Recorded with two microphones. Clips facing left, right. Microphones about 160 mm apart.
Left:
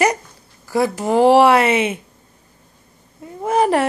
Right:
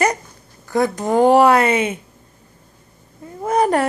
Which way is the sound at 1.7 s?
25° left (ahead or behind).